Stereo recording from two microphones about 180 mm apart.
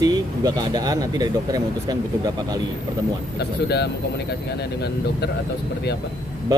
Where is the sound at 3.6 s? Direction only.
65° left (ahead or behind).